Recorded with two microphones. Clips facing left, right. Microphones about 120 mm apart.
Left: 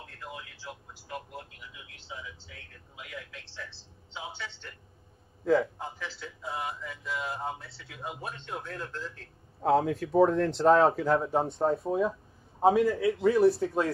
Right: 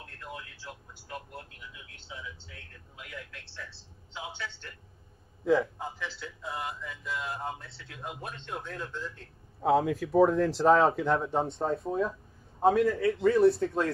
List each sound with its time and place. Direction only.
0.0 s telephone: centre (ahead or behind)
1.9 s speech: centre (ahead or behind)
12.9 s a man's voice: 25° left (ahead or behind)
13.2 s speech: centre (ahead or behind)